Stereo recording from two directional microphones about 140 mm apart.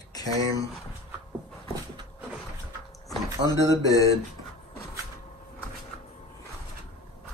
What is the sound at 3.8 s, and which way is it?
Speech, 25° left (ahead or behind).